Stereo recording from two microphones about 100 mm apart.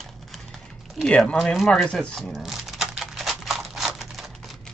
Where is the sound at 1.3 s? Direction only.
Centre (ahead or behind).